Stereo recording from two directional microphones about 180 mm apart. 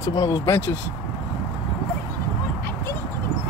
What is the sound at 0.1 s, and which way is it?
Speech, 20° left (ahead or behind).